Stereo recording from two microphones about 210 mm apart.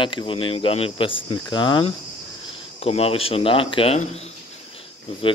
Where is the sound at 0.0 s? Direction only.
25° left (ahead or behind).